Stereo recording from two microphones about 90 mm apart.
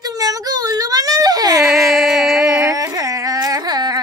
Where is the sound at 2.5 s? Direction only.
35° right (ahead or behind).